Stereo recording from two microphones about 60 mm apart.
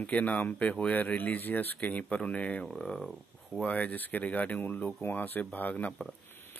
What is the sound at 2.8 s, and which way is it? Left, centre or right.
Speech, centre.